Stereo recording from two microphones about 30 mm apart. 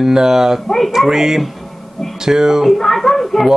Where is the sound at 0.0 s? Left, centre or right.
Centre.